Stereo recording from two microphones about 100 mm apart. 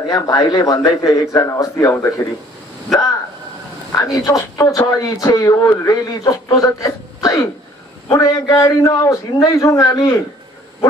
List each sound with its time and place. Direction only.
0.1 s a man's voice: 40° left (ahead or behind)
3.9 s a woman's voice: 35° left (ahead or behind)